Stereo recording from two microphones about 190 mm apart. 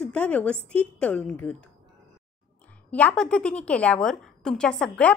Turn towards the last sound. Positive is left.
turn(degrees=5)  # may be behind; listen again after turning